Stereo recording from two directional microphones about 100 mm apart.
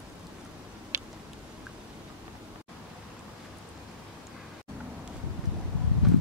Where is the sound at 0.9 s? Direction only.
25° right (ahead or behind).